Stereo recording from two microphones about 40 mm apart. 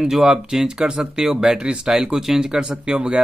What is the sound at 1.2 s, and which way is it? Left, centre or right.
Speech, centre.